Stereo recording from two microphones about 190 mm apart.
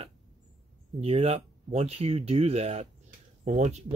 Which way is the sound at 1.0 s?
30° right (ahead or behind).